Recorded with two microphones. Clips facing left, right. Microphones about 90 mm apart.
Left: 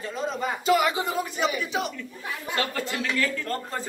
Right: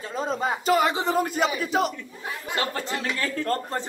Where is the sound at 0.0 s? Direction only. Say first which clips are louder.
Right 2 dB; 35° right (ahead or behind).